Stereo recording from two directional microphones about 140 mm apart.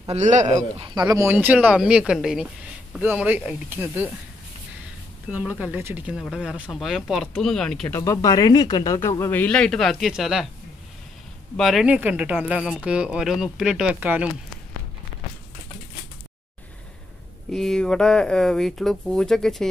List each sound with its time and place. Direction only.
0.1 s speech: 55° right (ahead or behind)
0.7 s speech: 30° right (ahead or behind); by 4.1 s 15° right (ahead or behind)
5.3 s speech: 10° right (ahead or behind)
7.9 s speech: 20° left (ahead or behind); by 10.4 s centre (ahead or behind)
11.5 s speech: centre (ahead or behind)
17.5 s speech: 5° left (ahead or behind)